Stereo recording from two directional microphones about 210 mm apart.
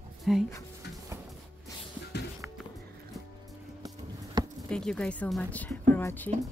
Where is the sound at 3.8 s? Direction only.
15° right (ahead or behind).